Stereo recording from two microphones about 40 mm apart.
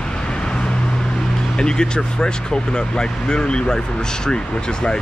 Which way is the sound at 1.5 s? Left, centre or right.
Left.